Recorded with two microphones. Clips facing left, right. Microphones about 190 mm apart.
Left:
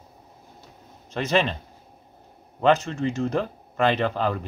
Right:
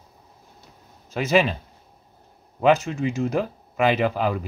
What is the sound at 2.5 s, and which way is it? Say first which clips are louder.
Speech: right 1 dB; 10° right (ahead or behind).